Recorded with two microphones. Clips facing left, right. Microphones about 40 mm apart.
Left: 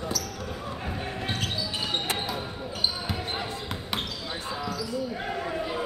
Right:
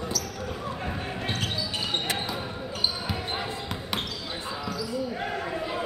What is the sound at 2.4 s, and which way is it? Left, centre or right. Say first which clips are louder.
Basketball bounce: right 1 dB; centre.